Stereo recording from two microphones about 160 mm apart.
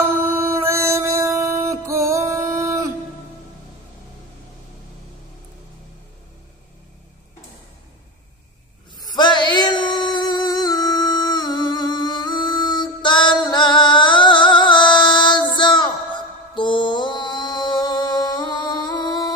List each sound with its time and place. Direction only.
0.4 s music: 15° right (ahead or behind)
9.0 s music: 25° left (ahead or behind)